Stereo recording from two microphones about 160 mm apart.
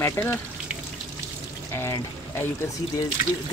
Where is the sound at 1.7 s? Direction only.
15° left (ahead or behind).